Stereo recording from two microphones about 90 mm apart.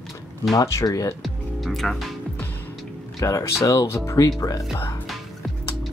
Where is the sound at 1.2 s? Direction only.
Centre (ahead or behind).